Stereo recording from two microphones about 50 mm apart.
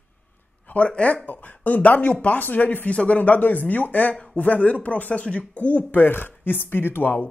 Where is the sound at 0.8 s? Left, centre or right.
Left.